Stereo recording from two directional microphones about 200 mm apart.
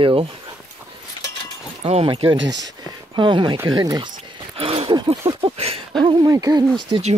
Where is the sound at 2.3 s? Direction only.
65° right (ahead or behind).